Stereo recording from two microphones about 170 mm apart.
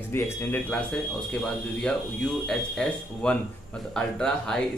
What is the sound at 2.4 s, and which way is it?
Speech, 5° left (ahead or behind).